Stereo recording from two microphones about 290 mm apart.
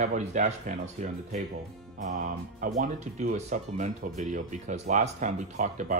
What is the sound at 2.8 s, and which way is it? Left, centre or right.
Speech, right.